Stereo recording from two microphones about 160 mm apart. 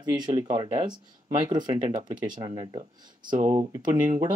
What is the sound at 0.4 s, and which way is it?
Speech, 25° right (ahead or behind).